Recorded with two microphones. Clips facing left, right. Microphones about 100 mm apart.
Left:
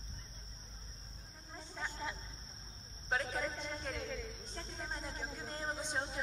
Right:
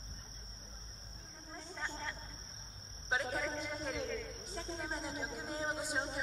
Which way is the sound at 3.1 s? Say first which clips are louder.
Right 1 dB; 5° right (ahead or behind).